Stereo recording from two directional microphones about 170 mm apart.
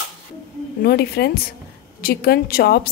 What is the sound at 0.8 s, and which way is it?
A woman's voice, 70° left (ahead or behind).